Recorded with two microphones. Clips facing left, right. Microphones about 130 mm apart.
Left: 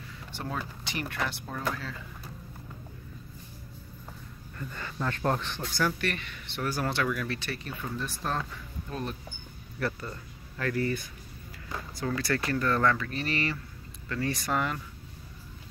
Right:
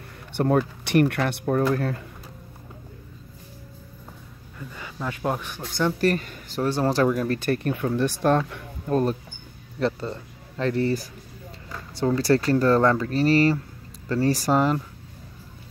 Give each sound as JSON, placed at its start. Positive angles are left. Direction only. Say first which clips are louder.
{"t": 0.4, "sound": "speech", "louder": "right 15 dB", "side_deg": -60}
{"t": 4.6, "sound": "speech", "louder": "right 1 dB", "side_deg": -10}
{"t": 5.6, "sound": "speech", "louder": "right 5 dB", "side_deg": -25}
{"t": 5.9, "sound": "speech", "louder": "right 11 dB", "side_deg": -40}
{"t": 6.6, "sound": "speech", "louder": "right 9 dB", "side_deg": -30}
{"t": 9.8, "sound": "speech", "louder": "right 8 dB", "side_deg": -25}